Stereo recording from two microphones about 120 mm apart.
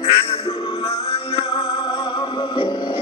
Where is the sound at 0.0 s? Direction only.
55° left (ahead or behind).